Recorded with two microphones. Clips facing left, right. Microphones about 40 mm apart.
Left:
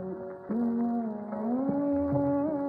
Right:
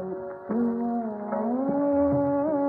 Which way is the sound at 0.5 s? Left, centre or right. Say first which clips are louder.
Right 3 dB; centre.